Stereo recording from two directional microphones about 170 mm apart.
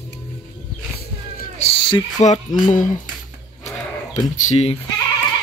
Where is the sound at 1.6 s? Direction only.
30° left (ahead or behind).